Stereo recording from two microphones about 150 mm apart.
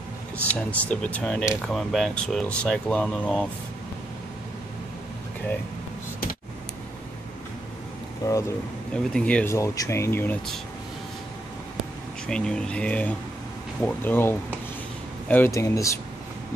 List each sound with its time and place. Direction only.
0.5 s speech: 10° left (ahead or behind)
8.2 s speech: 25° left (ahead or behind)
8.9 s speech: 5° left (ahead or behind)
12.3 s speech: 5° left (ahead or behind)